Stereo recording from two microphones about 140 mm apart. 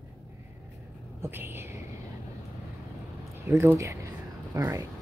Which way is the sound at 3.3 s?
20° right (ahead or behind).